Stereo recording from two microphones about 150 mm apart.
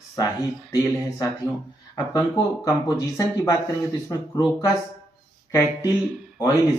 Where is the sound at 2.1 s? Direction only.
20° left (ahead or behind).